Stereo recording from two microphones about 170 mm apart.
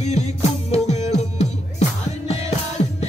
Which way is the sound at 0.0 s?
40° left (ahead or behind).